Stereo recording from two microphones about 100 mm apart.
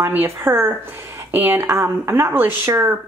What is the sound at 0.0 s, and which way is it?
Speech, 20° right (ahead or behind).